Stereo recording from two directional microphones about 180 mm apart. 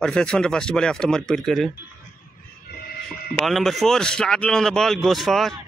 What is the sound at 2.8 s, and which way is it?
Music, 55° left (ahead or behind).